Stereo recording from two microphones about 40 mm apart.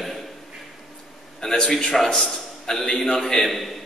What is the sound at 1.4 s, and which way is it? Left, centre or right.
A man's voice, centre.